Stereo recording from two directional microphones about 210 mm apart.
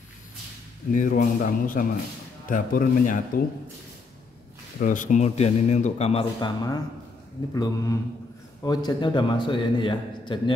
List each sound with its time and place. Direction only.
0.9 s a man's voice: 40° left (ahead or behind)
4.7 s a man's voice: 40° left (ahead or behind); by 10.5 s 25° left (ahead or behind)